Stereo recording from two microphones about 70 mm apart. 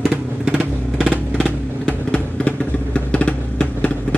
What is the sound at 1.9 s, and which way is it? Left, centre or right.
Vehicle, centre.